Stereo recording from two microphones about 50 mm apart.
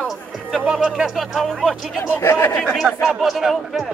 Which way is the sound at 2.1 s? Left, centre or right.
Left.